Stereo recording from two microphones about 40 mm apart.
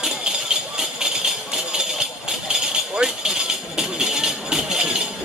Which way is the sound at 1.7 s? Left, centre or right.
Centre.